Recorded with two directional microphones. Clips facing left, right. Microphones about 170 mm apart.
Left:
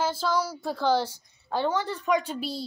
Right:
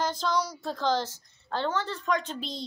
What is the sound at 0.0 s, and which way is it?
Speech, 5° left (ahead or behind).